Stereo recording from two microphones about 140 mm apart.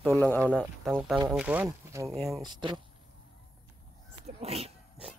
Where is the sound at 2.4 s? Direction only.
35° right (ahead or behind).